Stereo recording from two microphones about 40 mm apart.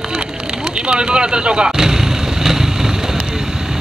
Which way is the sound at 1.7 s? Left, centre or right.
Centre.